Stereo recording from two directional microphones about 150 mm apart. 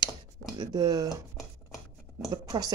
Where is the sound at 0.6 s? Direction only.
25° right (ahead or behind).